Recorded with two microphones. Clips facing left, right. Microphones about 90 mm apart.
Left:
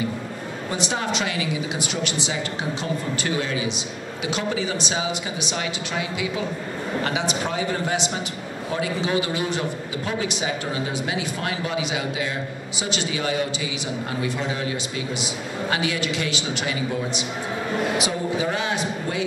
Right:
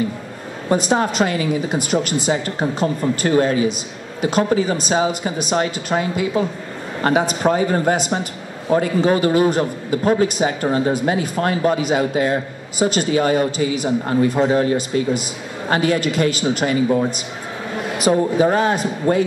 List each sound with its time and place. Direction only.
0.7 s a man's voice: 45° right (ahead or behind)